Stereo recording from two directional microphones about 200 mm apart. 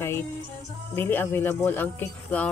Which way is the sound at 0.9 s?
10° left (ahead or behind).